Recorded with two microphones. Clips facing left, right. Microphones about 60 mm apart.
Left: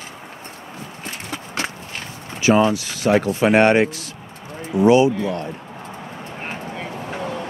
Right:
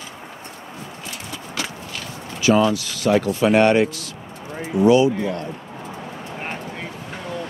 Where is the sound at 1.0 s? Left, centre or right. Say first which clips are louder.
Left 5 dB; left.